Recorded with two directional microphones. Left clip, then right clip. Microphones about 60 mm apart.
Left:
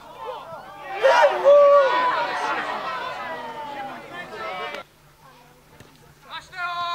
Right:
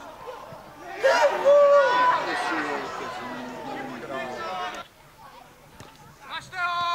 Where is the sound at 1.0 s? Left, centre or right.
Left.